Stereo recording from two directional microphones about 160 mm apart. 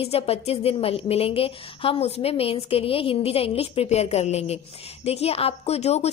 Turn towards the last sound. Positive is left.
turn(degrees=40)  # may be behind; listen again after turning